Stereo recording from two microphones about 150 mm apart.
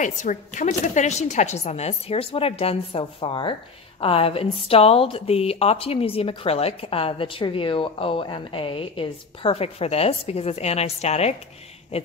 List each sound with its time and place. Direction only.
0.0 s a woman's voice: 55° left (ahead or behind)